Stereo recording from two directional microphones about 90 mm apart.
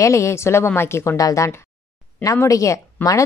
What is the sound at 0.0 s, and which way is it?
Speech, 35° left (ahead or behind).